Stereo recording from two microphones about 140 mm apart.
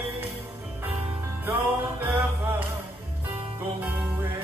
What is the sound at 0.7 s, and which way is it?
Music, 15° right (ahead or behind).